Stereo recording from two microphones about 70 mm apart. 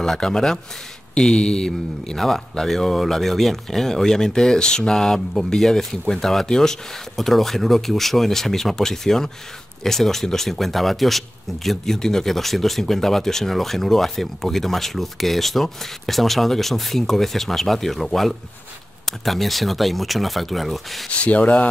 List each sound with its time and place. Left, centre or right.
0.0 s speech: centre
21.2 s speech: centre